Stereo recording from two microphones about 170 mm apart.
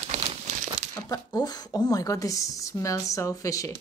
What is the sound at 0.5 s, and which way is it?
Crumpling, 45° right (ahead or behind).